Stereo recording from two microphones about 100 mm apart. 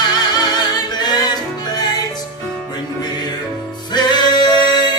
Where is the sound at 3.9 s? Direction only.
45° left (ahead or behind).